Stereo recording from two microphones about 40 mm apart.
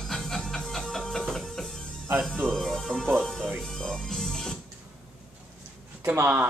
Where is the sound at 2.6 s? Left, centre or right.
Centre.